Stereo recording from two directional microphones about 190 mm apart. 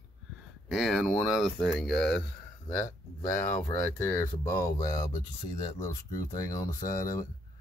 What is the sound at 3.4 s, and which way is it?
Speech, 40° left (ahead or behind).